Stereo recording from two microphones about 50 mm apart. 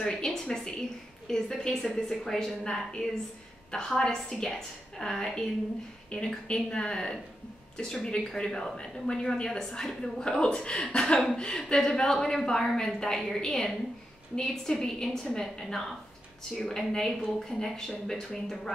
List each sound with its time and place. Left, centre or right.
0.0 s a woman's voice: centre
6.0 s a woman's voice: centre
16.5 s a woman's voice: centre